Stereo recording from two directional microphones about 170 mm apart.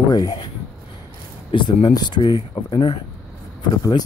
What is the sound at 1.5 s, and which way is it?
Speech, 30° left (ahead or behind).